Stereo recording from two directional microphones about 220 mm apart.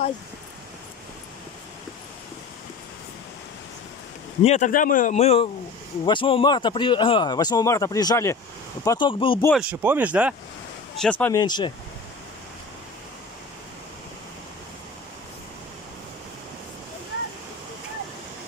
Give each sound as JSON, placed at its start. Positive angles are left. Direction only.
{"t": 4.4, "sound": "a man's voice", "side_deg": 30}
{"t": 9.5, "sound": "speech", "side_deg": -5}
{"t": 11.0, "sound": "speech", "side_deg": 5}
{"t": 11.4, "sound": "speech", "side_deg": 20}